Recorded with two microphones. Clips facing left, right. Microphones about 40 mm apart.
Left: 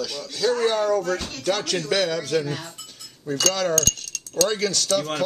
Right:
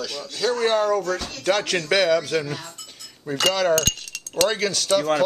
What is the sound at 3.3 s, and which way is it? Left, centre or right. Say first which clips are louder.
Wind chime: right 3 dB; right.